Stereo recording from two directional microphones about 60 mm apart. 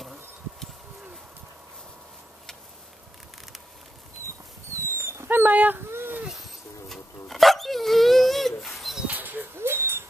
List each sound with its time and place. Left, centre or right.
0.0 s a sound: centre
4.7 s dog: right
5.4 s dog: right
5.9 s dog: right
6.9 s dog: centre
9.0 s a sound: right